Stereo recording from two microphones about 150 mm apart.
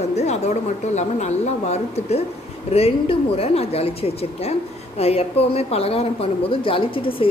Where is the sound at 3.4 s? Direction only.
40° left (ahead or behind).